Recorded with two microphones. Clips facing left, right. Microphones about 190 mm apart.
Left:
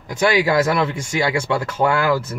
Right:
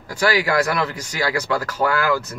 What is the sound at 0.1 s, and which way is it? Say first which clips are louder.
Speech: left 3 dB; 20° left (ahead or behind).